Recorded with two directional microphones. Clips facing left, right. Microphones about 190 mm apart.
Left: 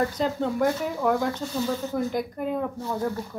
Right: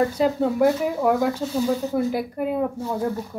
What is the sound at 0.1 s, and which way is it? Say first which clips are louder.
Speech: right 5 dB; 10° right (ahead or behind).